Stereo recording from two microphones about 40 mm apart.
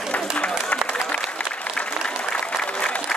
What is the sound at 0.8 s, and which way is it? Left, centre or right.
Applause, left.